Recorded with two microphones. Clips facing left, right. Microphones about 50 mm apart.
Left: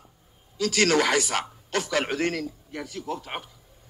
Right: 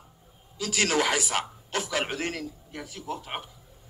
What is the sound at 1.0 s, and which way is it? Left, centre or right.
A man's voice, left.